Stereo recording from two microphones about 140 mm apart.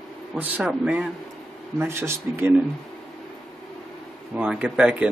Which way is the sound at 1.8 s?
15° right (ahead or behind).